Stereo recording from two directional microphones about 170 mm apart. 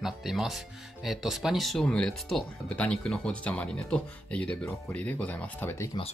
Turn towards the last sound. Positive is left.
turn(degrees=15)  # may be behind; listen again after turning